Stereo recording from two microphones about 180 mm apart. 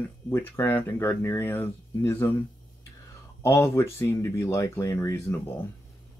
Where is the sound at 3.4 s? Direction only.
15° left (ahead or behind).